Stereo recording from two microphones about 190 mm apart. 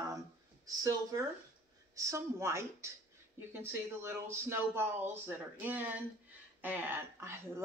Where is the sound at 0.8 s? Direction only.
20° right (ahead or behind).